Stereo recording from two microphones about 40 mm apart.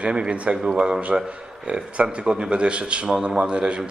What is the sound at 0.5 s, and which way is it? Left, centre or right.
A man's voice, centre.